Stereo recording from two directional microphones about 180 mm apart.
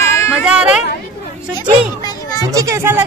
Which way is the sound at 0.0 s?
15° left (ahead or behind).